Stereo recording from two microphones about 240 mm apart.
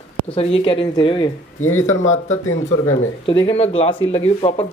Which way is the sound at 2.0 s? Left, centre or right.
Left.